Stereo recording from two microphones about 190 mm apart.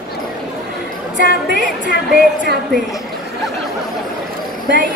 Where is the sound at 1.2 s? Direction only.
65° right (ahead or behind).